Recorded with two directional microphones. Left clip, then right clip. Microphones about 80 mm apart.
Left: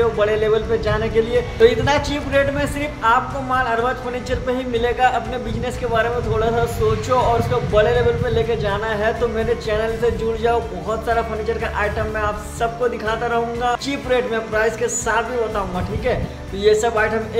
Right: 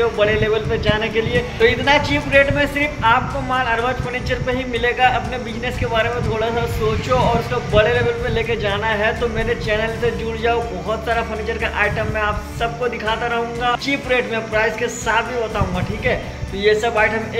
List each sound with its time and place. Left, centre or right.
0.0 s speech: centre
7.7 s speech: centre
16.6 s speech: left